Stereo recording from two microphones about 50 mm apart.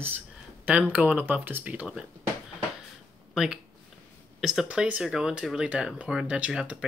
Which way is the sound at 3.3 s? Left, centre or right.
Centre.